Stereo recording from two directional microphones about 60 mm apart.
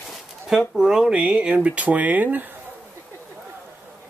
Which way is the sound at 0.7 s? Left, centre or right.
Centre.